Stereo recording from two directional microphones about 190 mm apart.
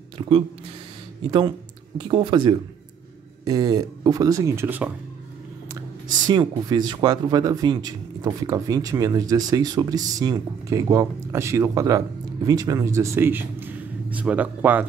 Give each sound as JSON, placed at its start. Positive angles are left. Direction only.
{"t": 0.2, "sound": "a sound", "side_deg": -20}
{"t": 2.0, "sound": "a man's voice", "side_deg": -25}
{"t": 6.2, "sound": "a man's voice", "side_deg": -20}